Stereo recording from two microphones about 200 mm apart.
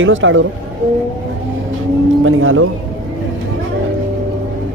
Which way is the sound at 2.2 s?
90° right.